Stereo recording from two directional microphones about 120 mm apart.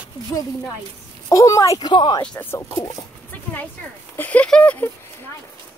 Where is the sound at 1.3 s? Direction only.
25° left (ahead or behind).